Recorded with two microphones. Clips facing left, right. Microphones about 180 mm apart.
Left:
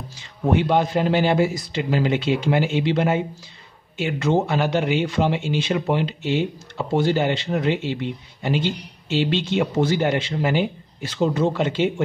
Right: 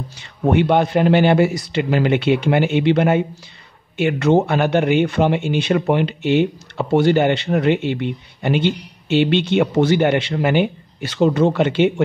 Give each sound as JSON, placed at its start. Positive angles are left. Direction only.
{"t": 0.2, "sound": "speech", "side_deg": -65}